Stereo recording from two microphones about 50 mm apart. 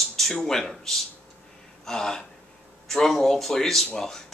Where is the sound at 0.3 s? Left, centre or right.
Centre.